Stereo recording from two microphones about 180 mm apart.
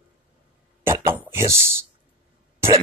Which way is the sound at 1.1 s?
10° right (ahead or behind).